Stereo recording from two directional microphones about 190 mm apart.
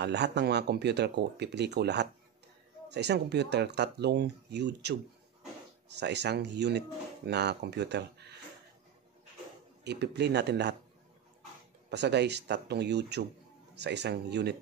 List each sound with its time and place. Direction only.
0.0 s speech: 65° right (ahead or behind)
9.8 s speech: 60° right (ahead or behind)
11.9 s speech: 65° right (ahead or behind)